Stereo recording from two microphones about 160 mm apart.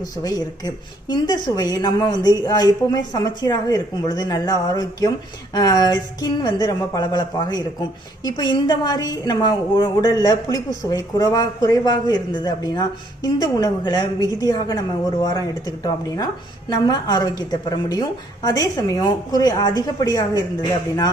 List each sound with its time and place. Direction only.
0.2 s speech: 25° left (ahead or behind)